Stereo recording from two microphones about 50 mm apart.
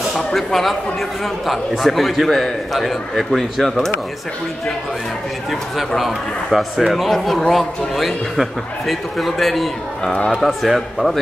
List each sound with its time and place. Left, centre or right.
0.1 s speech: centre
5.8 s speech: centre
10.1 s speech: centre
10.4 s speech: centre